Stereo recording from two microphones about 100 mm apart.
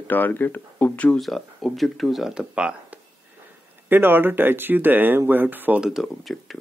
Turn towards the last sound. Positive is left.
turn(degrees=0)  # may be behind; listen again after turning